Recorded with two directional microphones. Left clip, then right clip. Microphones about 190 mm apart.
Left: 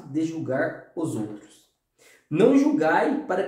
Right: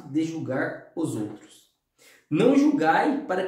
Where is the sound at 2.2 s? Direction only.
10° right (ahead or behind).